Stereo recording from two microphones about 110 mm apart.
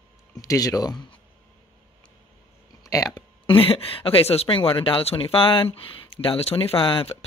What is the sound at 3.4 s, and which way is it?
Speech, 55° left (ahead or behind).